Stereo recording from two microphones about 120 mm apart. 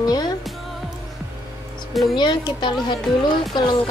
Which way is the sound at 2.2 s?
40° left (ahead or behind).